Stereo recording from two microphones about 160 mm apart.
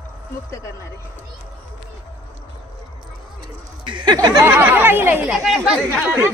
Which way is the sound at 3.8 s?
30° right (ahead or behind).